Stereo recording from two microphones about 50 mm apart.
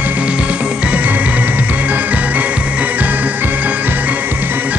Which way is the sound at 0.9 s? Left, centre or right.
Right.